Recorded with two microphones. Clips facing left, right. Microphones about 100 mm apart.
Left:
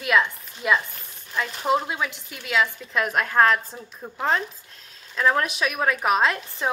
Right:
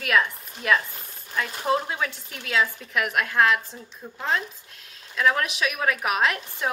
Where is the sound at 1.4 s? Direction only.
10° left (ahead or behind).